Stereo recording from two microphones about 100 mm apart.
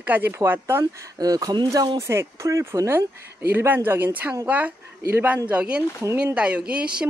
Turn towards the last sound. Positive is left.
turn(degrees=-10)  # may be behind; listen again after turning